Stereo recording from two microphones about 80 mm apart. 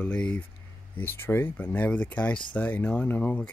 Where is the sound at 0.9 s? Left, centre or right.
Left.